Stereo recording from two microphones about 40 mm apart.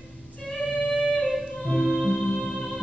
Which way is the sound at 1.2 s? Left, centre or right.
Centre.